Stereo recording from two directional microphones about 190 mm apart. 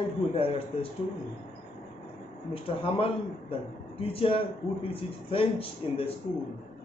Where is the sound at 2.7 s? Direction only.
30° left (ahead or behind).